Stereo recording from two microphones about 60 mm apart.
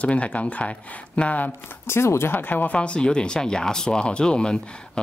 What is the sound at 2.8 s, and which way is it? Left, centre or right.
Speech, centre.